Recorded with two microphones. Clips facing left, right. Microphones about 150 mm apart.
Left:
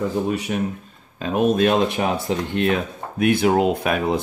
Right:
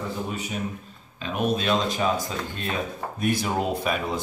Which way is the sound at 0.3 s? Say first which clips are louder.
Left 8 dB; 70° left (ahead or behind).